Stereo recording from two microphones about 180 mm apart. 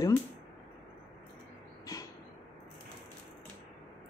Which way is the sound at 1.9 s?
20° left (ahead or behind).